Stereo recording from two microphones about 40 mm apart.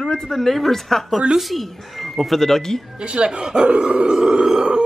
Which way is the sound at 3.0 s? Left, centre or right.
Right.